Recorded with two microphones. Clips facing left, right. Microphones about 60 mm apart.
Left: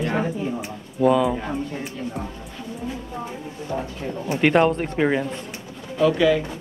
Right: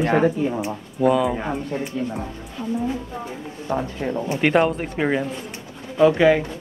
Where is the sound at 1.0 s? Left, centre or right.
Centre.